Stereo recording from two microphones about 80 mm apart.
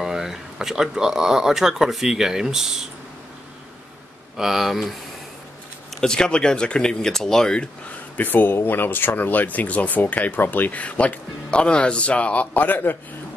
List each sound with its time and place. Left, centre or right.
0.0 s speech: centre
4.4 s speech: centre
5.9 s speech: centre
8.2 s speech: left